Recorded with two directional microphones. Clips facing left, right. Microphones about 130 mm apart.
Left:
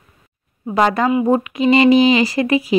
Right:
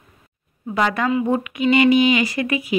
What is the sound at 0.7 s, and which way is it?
Speech, 35° left (ahead or behind).